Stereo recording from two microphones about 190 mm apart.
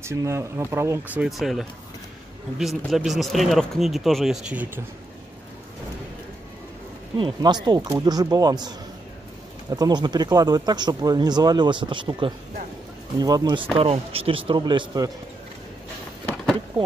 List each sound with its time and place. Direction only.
0.0 s speech: 15° right (ahead or behind)
7.2 s speech: 25° right (ahead or behind)
13.7 s speech: 30° right (ahead or behind)